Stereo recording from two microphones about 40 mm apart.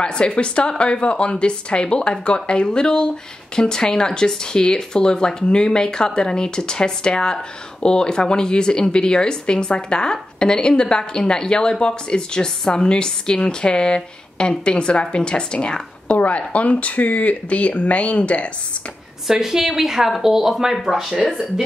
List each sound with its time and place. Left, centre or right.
0.0 s a woman's voice: left
16.2 s speech: left
19.2 s a woman's voice: centre